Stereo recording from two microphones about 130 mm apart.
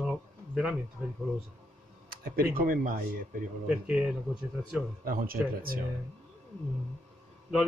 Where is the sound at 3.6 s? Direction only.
10° right (ahead or behind).